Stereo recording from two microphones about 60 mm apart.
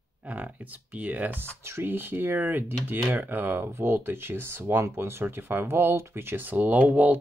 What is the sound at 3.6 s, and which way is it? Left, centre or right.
Speech, right.